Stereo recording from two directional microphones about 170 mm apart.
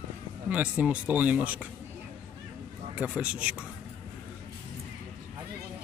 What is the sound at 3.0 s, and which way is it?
Speech, 10° right (ahead or behind).